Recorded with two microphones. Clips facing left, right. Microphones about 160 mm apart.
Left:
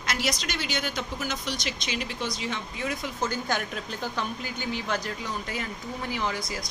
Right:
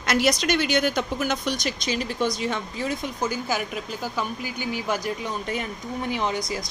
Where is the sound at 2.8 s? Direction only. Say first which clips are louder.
Right 4 dB; 30° right (ahead or behind).